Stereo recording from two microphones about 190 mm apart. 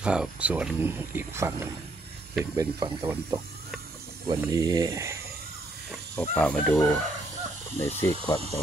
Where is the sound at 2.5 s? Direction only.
15° right (ahead or behind).